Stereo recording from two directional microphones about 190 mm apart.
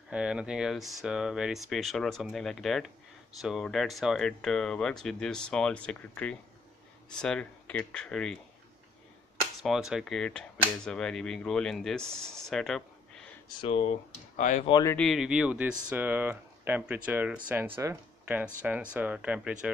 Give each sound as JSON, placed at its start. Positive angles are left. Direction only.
{"t": 0.1, "sound": "speech", "side_deg": -5}
{"t": 9.6, "sound": "speech", "side_deg": 0}
{"t": 13.5, "sound": "speech", "side_deg": 30}
{"t": 14.7, "sound": "speech", "side_deg": 20}
{"t": 15.0, "sound": "speech", "side_deg": 0}